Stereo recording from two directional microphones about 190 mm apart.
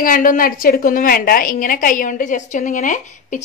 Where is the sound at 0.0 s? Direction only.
45° left (ahead or behind).